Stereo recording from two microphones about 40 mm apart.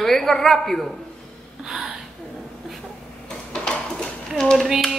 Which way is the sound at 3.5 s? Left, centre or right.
Centre.